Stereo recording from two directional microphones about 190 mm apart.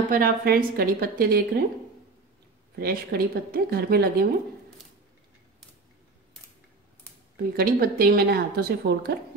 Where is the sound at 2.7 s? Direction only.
55° right (ahead or behind).